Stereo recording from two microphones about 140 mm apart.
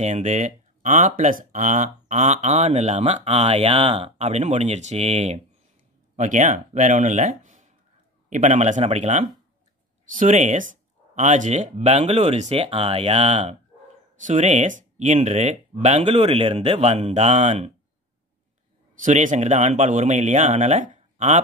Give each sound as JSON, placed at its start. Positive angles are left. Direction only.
{"t": 0.0, "sound": "speech", "side_deg": -55}
{"t": 10.1, "sound": "speech", "side_deg": -65}
{"t": 19.0, "sound": "speech", "side_deg": -60}